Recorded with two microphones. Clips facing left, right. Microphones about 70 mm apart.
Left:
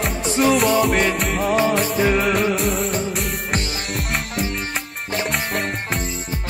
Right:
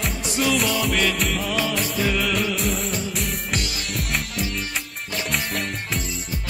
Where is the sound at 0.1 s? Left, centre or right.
Left.